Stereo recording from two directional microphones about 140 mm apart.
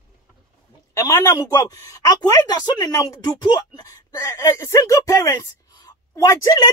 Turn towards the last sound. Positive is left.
turn(degrees=30)  # may be behind; listen again after turning